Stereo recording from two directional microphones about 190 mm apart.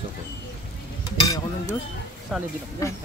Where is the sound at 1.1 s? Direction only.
20° left (ahead or behind).